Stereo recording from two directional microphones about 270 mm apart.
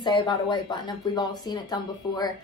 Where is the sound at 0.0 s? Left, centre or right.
Centre.